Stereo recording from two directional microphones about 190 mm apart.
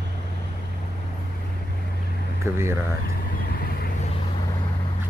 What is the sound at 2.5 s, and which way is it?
Speech, 15° right (ahead or behind).